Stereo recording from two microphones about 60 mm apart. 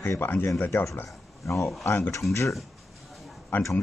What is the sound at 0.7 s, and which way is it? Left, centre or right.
Speech, left.